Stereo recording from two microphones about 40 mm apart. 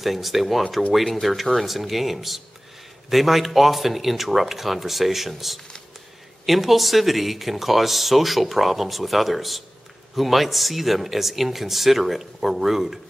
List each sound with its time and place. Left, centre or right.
0.0 s speech: centre
6.4 s speech: centre